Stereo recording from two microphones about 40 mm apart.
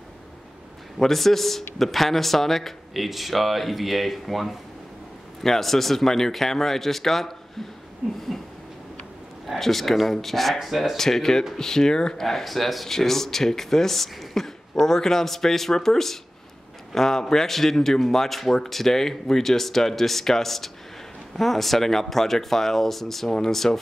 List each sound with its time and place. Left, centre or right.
0.9 s speech: centre
8.0 s a sound: right
9.6 s speech: centre
11.0 s speech: centre